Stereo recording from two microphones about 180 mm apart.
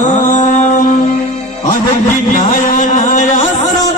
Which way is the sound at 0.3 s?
40° left (ahead or behind).